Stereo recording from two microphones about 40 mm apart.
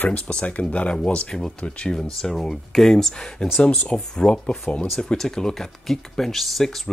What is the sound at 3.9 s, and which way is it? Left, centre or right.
Speech, left.